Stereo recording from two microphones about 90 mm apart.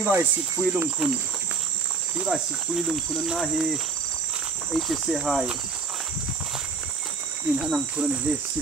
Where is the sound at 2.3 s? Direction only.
Centre (ahead or behind).